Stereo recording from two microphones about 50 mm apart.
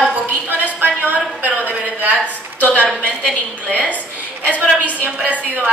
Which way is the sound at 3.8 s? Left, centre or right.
Left.